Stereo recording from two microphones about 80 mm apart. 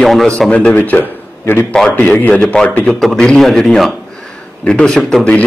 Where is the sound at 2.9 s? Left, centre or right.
Centre.